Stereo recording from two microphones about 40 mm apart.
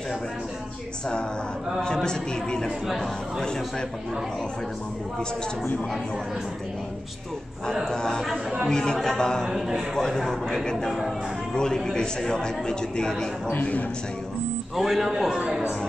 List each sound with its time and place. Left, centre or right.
2.0 s a woman's voice: centre
7.8 s a woman's voice: centre
8.9 s speech: centre
9.2 s a woman's voice: centre
9.5 s a man's voice: centre
9.9 s a woman's voice: centre
14.8 s a man's voice: centre